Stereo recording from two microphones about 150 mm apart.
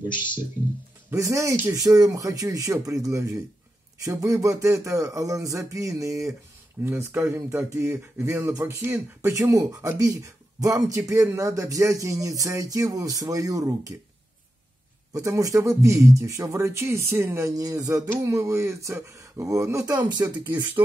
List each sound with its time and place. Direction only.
1.1 s speech: 20° right (ahead or behind)
15.1 s speech: 20° right (ahead or behind)